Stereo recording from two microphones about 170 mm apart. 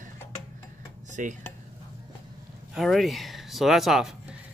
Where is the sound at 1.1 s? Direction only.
50° right (ahead or behind).